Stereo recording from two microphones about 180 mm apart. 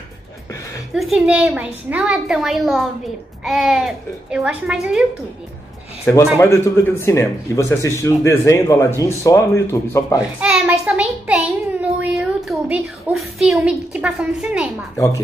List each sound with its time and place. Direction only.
0.9 s a child's voice: 5° right (ahead or behind)
6.3 s speech: 15° left (ahead or behind)
10.4 s a child's voice: 5° right (ahead or behind)